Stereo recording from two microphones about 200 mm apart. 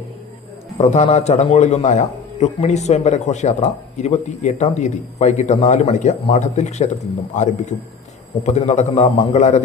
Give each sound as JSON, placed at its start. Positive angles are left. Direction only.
{"t": 0.7, "sound": "a man's voice", "side_deg": 30}
{"t": 8.5, "sound": "a man's voice", "side_deg": 35}